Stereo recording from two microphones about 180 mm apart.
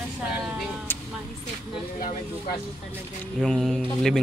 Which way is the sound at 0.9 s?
10° left (ahead or behind).